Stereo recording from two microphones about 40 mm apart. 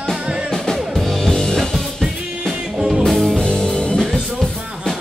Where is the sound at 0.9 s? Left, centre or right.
Centre.